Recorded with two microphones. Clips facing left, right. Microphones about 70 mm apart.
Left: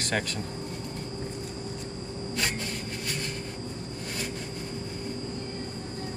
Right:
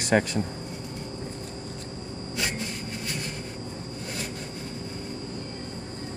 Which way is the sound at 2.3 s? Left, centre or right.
Centre.